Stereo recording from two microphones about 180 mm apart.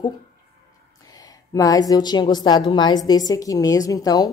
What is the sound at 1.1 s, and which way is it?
A woman's voice, 20° left (ahead or behind).